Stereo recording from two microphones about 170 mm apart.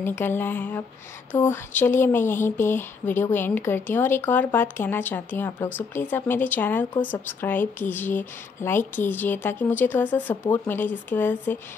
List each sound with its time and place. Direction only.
0.0 s speech: 15° left (ahead or behind)